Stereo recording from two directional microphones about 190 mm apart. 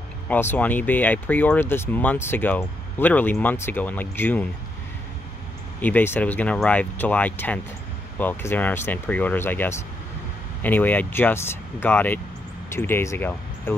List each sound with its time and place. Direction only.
0.3 s speech: 10° left (ahead or behind)
5.8 s speech: 10° left (ahead or behind)